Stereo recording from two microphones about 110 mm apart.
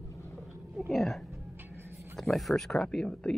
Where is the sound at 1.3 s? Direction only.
20° right (ahead or behind).